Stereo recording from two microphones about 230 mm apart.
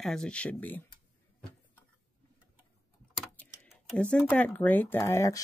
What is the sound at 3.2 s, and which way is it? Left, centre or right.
Speech, centre.